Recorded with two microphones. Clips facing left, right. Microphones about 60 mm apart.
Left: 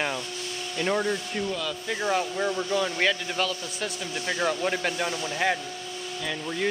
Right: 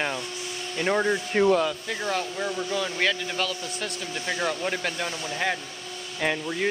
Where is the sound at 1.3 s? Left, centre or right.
Right.